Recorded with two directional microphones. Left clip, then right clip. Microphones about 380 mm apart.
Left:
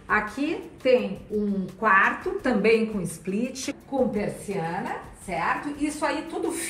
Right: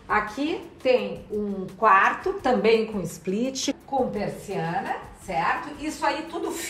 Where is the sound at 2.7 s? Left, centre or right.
Right.